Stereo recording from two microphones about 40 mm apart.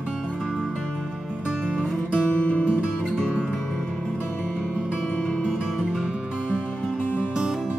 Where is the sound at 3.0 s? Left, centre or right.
Centre.